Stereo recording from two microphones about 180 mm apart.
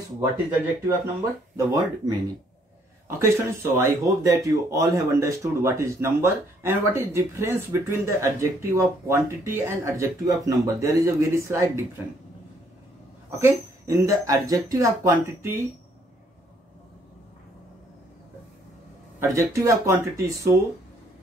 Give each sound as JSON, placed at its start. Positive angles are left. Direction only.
{"t": 0.8, "sound": "speech", "side_deg": -20}
{"t": 13.3, "sound": "speech", "side_deg": -15}
{"t": 19.1, "sound": "speech", "side_deg": -15}